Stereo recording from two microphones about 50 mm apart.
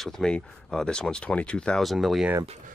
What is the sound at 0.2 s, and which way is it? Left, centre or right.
Speech, centre.